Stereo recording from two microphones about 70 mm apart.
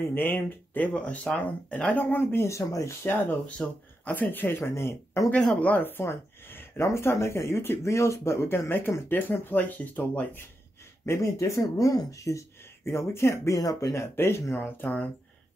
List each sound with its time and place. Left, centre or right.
0.0 s speech: left
0.9 s speech: centre
1.9 s speech: left
3.1 s speech: left
5.5 s speech: left
11.1 s speech: left
13.6 s speech: left
14.1 s speech: left
14.6 s speech: left